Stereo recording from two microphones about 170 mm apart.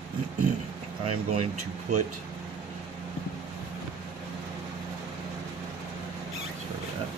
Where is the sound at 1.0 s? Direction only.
40° right (ahead or behind).